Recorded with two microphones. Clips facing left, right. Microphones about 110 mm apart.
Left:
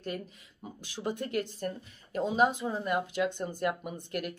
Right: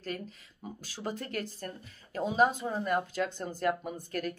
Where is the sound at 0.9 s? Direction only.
15° left (ahead or behind).